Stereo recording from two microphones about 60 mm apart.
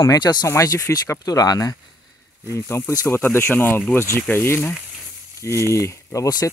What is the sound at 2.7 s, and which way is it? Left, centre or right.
Speech, left.